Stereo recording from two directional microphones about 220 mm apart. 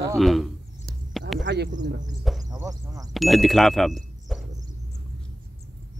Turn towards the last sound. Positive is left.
turn(degrees=0)  # may be behind; listen again after turning